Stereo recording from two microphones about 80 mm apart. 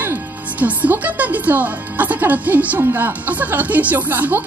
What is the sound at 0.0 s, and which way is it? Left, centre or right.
Speech, right.